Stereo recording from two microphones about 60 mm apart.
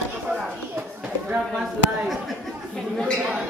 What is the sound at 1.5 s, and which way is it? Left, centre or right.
Speech, centre.